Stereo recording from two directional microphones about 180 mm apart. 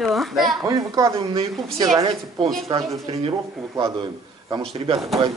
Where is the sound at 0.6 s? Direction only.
20° right (ahead or behind).